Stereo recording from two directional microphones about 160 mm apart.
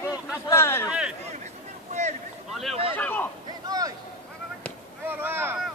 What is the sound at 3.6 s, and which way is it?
Speech, 25° right (ahead or behind).